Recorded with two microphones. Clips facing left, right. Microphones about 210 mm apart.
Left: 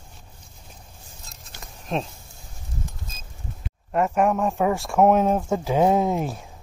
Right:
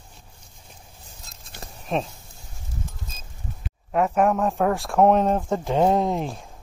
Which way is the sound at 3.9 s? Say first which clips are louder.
Right 1 dB; centre (ahead or behind).